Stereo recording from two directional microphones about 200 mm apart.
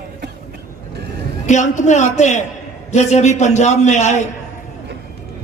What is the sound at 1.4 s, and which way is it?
A man's voice, 35° left (ahead or behind).